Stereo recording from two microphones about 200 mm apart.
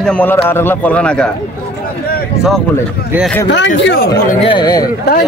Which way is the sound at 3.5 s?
60° left (ahead or behind).